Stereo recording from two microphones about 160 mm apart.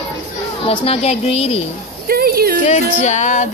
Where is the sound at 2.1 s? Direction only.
70° right (ahead or behind).